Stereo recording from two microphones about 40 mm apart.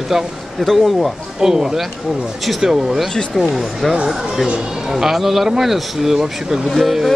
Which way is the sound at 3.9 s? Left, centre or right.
Centre.